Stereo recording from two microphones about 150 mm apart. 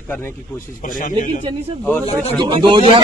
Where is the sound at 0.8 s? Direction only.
60° left (ahead or behind).